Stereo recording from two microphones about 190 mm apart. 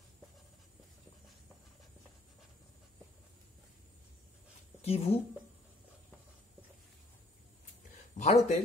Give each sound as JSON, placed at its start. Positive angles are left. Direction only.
{"t": 4.8, "sound": "a woman's voice", "side_deg": 35}
{"t": 8.2, "sound": "speech", "side_deg": 35}